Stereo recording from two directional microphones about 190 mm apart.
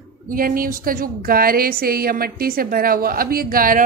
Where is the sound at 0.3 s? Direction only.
45° right (ahead or behind).